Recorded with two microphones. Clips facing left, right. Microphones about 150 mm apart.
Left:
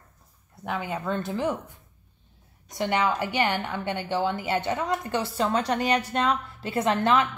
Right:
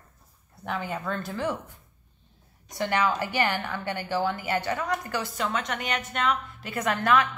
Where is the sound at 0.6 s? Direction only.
20° left (ahead or behind).